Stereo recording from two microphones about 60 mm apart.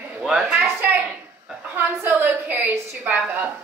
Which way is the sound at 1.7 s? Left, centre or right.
Right.